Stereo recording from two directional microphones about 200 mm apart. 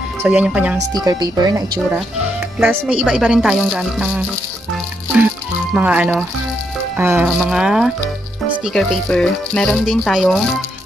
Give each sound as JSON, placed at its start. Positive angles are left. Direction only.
{"t": 0.2, "sound": "speech", "side_deg": -5}
{"t": 0.9, "sound": "speech", "side_deg": -20}
{"t": 2.6, "sound": "speech", "side_deg": -5}
{"t": 5.8, "sound": "speech", "side_deg": -5}